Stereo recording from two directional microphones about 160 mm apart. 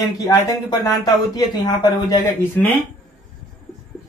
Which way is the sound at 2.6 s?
10° left (ahead or behind).